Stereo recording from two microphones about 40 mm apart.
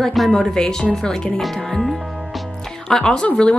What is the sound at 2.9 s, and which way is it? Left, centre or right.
Speech, centre.